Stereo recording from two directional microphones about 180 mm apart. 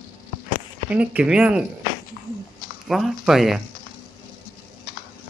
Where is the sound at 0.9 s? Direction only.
5° right (ahead or behind).